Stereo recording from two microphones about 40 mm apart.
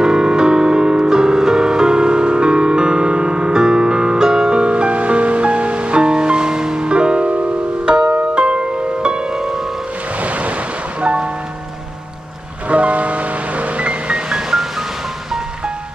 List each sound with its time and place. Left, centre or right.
0.0 s music: centre
9.3 s music: centre
10.2 s vehicle: right
11.0 s music: right
12.6 s music: right